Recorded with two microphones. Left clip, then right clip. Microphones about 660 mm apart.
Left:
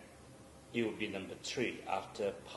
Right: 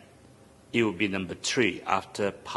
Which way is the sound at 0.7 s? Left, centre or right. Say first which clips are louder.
Right 11 dB; right.